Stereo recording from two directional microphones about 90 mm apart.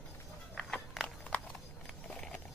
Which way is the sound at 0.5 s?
10° left (ahead or behind).